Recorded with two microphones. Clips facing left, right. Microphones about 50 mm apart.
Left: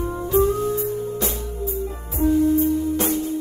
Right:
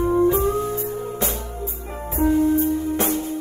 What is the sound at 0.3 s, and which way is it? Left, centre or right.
Music, right.